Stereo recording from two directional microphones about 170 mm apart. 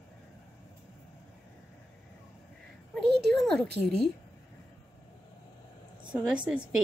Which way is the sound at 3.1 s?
70° right (ahead or behind).